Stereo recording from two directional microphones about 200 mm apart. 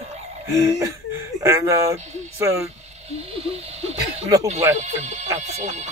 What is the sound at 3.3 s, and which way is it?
Speech, 30° right (ahead or behind).